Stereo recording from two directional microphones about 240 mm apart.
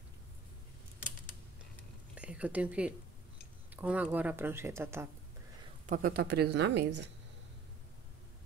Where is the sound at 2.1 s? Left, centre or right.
Centre.